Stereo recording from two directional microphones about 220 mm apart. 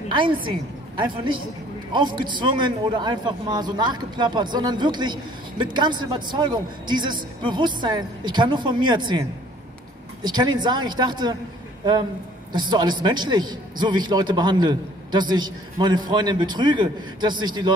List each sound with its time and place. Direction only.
0.5 s a man's voice: 20° right (ahead or behind)
12.5 s a man's voice: 20° right (ahead or behind)